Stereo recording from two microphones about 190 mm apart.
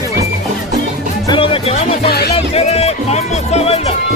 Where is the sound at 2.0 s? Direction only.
55° left (ahead or behind).